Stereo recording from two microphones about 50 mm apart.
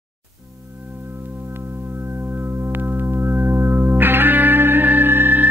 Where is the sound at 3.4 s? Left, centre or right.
Right.